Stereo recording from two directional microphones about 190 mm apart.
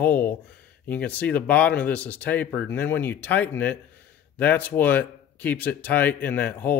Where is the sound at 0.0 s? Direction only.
10° left (ahead or behind).